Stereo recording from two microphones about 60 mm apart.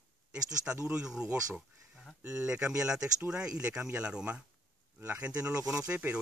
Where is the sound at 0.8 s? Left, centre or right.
Centre.